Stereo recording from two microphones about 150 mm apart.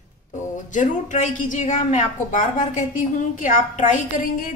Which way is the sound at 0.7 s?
55° left (ahead or behind).